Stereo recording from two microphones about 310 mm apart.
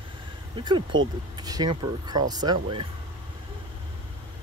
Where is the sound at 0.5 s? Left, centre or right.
Centre.